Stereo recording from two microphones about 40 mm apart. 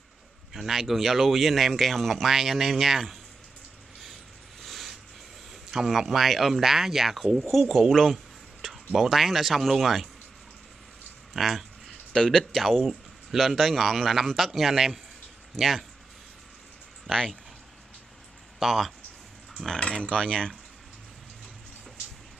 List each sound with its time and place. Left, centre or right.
0.5 s speech: centre
4.6 s a sound: centre
5.7 s speech: centre
11.3 s a sound: centre
12.2 s speech: centre
12.5 s speech: centre
18.6 s speech: centre
19.8 s speech: left